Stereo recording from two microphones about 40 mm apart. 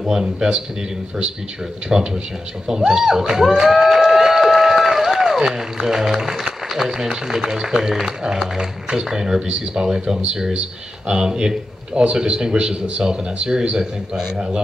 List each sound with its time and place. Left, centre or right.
0.1 s speech: centre
1.9 s speech: centre